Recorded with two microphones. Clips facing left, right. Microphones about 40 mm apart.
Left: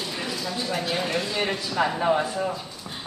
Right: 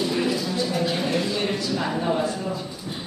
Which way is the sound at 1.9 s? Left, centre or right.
Left.